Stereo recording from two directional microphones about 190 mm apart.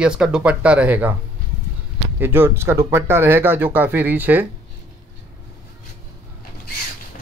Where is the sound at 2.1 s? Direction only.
10° right (ahead or behind).